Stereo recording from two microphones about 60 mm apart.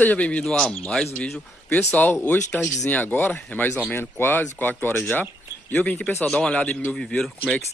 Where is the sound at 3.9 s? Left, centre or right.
Left.